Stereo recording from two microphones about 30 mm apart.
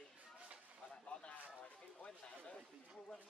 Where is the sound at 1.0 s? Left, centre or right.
Left.